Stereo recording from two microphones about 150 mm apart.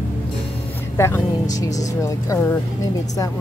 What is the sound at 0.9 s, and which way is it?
Speech, 20° left (ahead or behind).